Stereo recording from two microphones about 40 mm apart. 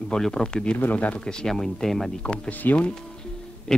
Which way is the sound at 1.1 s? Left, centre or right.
Centre.